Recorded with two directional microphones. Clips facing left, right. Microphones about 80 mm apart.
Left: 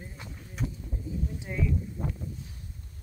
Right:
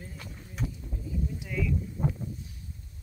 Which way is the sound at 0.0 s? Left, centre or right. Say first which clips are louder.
Even; left.